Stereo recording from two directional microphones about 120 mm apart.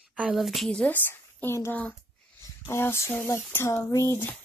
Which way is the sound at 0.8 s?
15° left (ahead or behind).